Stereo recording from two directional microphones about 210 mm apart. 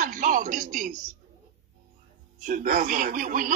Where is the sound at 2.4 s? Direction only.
40° right (ahead or behind).